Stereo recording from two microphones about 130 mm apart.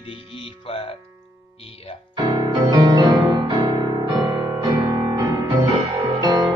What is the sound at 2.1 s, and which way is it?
Music, 35° right (ahead or behind).